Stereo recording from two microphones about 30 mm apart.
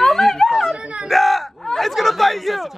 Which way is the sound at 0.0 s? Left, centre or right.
Centre.